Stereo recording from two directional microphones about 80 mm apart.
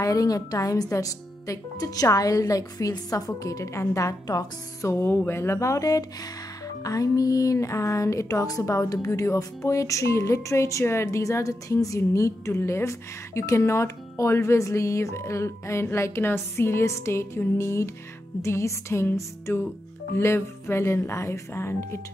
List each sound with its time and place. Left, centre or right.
0.0 s a woman's voice: left
4.8 s speech: left